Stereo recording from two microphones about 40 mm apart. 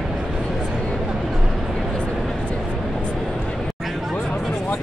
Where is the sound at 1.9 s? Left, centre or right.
Left.